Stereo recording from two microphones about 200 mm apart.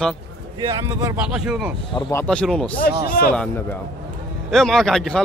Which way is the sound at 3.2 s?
45° left (ahead or behind).